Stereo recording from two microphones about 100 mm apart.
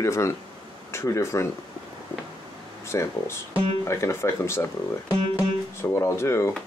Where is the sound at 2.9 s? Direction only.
30° left (ahead or behind).